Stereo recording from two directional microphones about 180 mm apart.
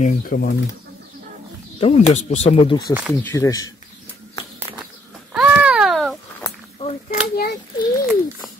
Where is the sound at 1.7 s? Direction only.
35° left (ahead or behind).